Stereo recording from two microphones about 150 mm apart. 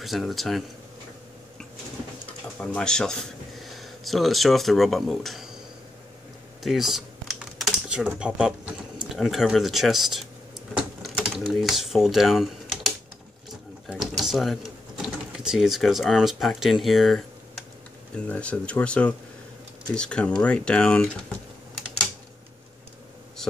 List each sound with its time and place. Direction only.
0.0 s speech: centre (ahead or behind)
2.6 s speech: 5° left (ahead or behind)
6.6 s typing: centre (ahead or behind)
8.1 s speech: 5° right (ahead or behind)
10.8 s sewing machine: 5° right (ahead or behind)
11.5 s speech: centre (ahead or behind)
13.8 s a sound: centre (ahead or behind)
18.1 s speech: 10° left (ahead or behind)